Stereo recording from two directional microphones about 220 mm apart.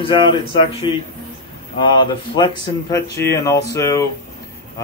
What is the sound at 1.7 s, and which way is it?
Speech, 20° left (ahead or behind).